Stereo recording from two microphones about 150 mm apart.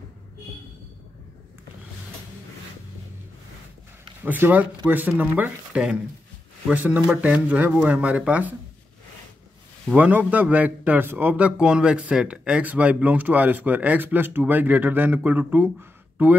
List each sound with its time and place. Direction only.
4.2 s a man's voice: 10° right (ahead or behind)
9.8 s a man's voice: 10° right (ahead or behind)